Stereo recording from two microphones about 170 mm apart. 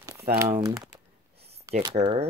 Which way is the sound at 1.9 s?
35° right (ahead or behind).